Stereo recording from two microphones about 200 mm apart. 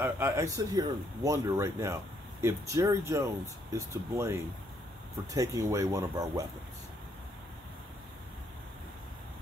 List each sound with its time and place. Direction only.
0.0 s speech: 15° right (ahead or behind)